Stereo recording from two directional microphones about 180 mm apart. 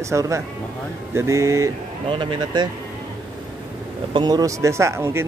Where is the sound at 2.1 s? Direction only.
30° right (ahead or behind).